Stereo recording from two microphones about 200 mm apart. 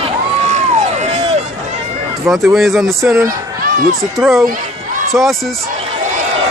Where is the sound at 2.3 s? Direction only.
Centre (ahead or behind).